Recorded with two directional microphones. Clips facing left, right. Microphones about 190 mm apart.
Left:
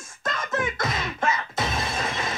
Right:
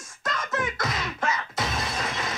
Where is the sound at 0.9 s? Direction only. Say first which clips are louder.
Left 2 dB; 25° left (ahead or behind).